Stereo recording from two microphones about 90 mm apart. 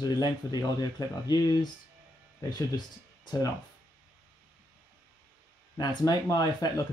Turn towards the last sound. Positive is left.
turn(degrees=45)  # may be behind; listen again after turning